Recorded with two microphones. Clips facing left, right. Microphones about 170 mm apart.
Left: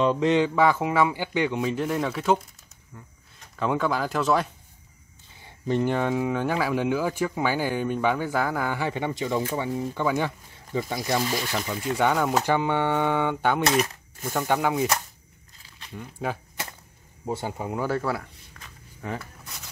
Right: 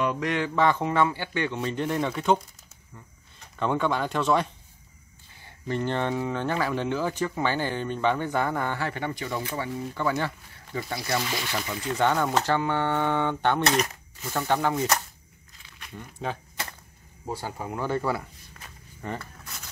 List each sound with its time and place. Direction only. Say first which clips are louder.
0.0 s speech: left 6 dB; 25° left (ahead or behind)
0.6 s speech: left 2 dB; 5° left (ahead or behind)
1.6 s speech: left 2 dB; 5° left (ahead or behind)
5.4 s a sound: left 4 dB; 15° left (ahead or behind)
5.9 s speech: left 3 dB; 5° left (ahead or behind)
8.7 s speech: left 3 dB; 15° left (ahead or behind)
11.3 s speech: left 3 dB; 5° left (ahead or behind)
16.0 s speech: left 2 dB; 10° left (ahead or behind)
17.3 s speech: left 3 dB; 20° left (ahead or behind)
17.8 s speech: right 1 dB; centre (ahead or behind)